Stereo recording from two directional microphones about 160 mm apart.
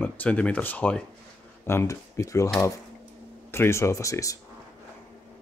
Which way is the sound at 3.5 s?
15° left (ahead or behind).